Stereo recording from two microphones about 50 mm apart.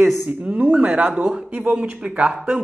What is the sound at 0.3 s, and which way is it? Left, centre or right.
Speech, right.